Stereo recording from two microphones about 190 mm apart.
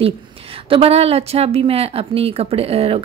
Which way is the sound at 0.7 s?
30° right (ahead or behind).